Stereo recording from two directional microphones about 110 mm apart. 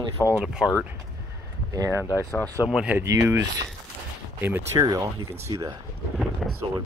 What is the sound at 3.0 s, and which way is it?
Speech, 20° right (ahead or behind).